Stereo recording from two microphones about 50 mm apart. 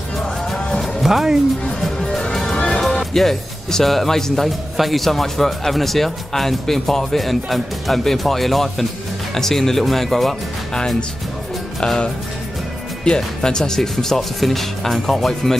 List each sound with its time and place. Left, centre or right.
1.0 s speech: centre
1.8 s music: centre
3.0 s a man's voice: centre
11.8 s speech: centre